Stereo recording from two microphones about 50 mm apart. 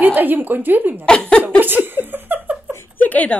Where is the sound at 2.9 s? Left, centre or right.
Left.